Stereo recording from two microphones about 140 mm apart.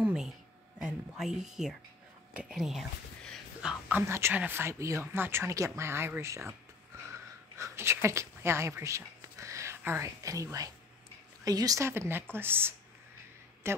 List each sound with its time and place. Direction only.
0.0 s a sound: 5° right (ahead or behind)
0.7 s speech: 5° right (ahead or behind)
4.0 s speech: 20° right (ahead or behind)
7.5 s a woman's voice: 20° right (ahead or behind)